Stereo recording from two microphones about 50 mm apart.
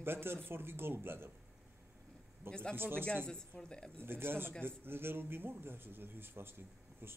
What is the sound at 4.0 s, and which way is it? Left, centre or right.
Speech, right.